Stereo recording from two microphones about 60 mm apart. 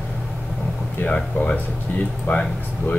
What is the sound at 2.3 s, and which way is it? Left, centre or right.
Speech, left.